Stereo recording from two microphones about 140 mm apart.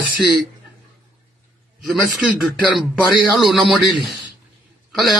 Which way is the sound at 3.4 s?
Centre (ahead or behind).